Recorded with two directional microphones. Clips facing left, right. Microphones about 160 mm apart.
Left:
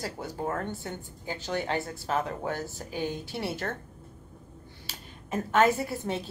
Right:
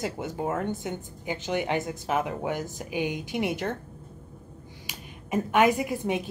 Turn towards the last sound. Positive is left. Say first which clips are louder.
# right 4 dB
turn(degrees=-15)  # may be behind; listen again after turning